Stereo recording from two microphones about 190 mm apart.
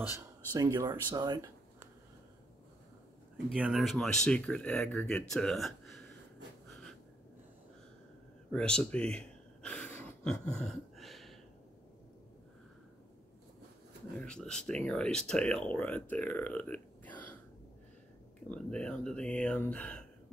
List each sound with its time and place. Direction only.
0.0 s speech: 20° right (ahead or behind)
3.4 s speech: 5° right (ahead or behind)
5.3 s a sound: centre (ahead or behind)
8.5 s a sound: 5° left (ahead or behind)
14.2 s speech: 5° left (ahead or behind)
18.5 s speech: 5° left (ahead or behind)